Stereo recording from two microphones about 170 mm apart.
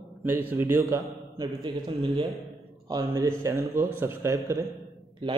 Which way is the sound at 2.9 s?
20° right (ahead or behind).